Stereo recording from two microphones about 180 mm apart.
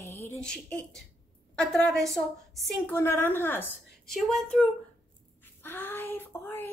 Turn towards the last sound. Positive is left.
turn(degrees=10)  # may be behind; listen again after turning